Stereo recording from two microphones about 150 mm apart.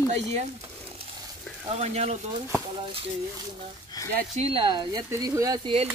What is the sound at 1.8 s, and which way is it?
Speech, 45° right (ahead or behind).